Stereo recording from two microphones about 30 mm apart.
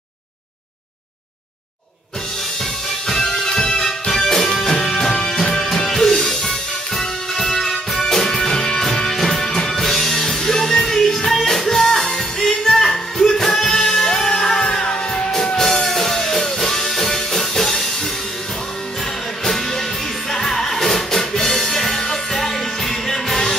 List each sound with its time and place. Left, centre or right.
3.1 s music: centre
4.1 s music: centre
19.4 s music: centre